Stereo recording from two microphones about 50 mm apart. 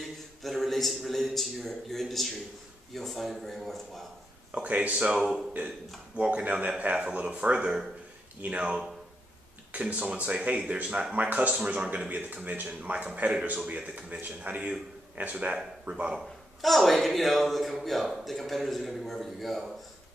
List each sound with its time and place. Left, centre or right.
0.0 s a man's voice: centre
4.5 s speech: right
5.1 s speech: centre
6.1 s speech: right
7.5 s speech: centre
11.1 s speech: right
16.6 s speech: centre